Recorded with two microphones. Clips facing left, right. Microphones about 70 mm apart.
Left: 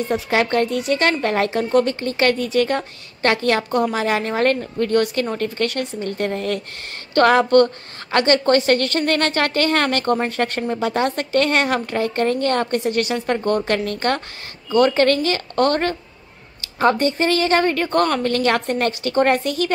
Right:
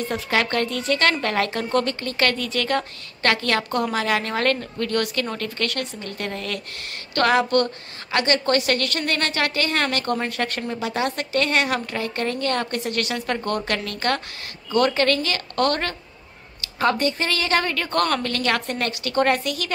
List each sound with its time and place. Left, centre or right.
0.1 s a woman's voice: left
18.3 s a woman's voice: left